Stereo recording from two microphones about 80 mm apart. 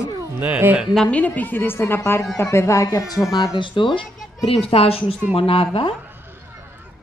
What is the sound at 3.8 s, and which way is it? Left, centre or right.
Speech, left.